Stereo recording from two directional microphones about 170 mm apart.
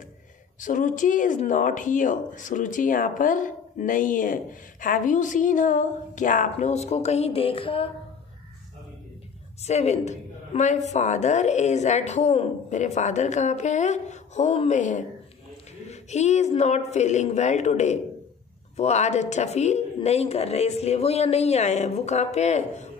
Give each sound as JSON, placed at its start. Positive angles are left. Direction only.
{"t": 0.6, "sound": "speech", "side_deg": 50}
{"t": 9.7, "sound": "a woman's voice", "side_deg": 40}